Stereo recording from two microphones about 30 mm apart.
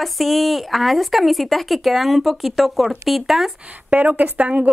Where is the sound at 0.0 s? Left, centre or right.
Centre.